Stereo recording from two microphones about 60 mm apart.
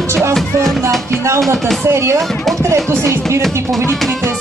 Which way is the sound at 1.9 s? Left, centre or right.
Right.